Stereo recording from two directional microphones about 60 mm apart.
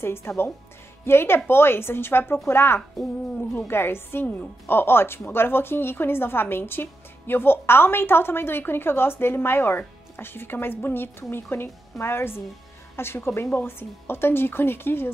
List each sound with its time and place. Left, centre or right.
0.0 s a woman's voice: left